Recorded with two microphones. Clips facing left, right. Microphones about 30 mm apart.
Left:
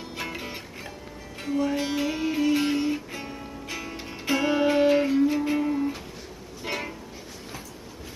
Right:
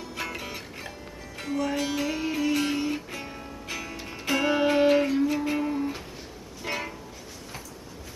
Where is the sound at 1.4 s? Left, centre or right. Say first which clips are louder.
Left 2 dB; centre.